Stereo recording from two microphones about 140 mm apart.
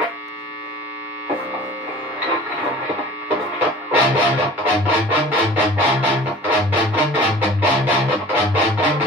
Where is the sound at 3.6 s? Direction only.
10° right (ahead or behind).